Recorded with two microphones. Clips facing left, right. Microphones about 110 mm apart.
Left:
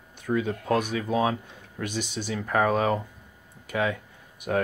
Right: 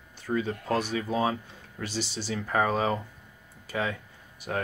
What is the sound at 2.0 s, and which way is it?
Speech, 55° left (ahead or behind).